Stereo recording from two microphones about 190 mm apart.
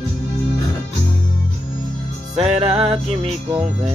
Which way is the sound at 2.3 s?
30° right (ahead or behind).